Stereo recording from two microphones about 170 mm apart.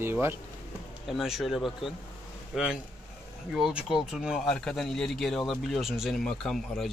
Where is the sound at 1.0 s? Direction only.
Centre (ahead or behind).